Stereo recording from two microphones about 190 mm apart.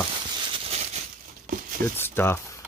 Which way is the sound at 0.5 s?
35° right (ahead or behind).